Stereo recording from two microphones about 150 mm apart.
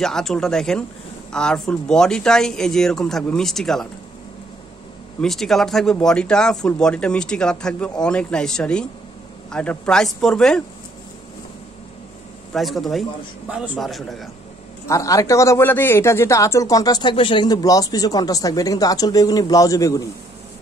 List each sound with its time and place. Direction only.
0.0 s speech: 5° left (ahead or behind)
5.2 s speech: centre (ahead or behind)
12.5 s speech: centre (ahead or behind)
14.9 s speech: 20° left (ahead or behind)